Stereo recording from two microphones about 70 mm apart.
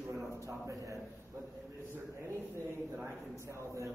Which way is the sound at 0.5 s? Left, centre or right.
Right.